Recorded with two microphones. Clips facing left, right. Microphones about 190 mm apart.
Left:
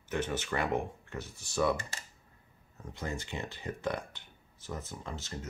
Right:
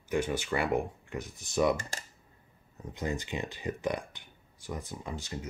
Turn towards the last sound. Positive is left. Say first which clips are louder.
# right 3 dB
turn(degrees=-15)  # may be behind; listen again after turning